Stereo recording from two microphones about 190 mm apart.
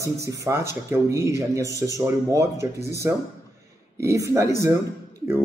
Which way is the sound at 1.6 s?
15° left (ahead or behind).